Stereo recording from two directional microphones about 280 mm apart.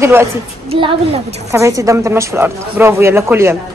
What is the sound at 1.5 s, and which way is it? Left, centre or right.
Speech, centre.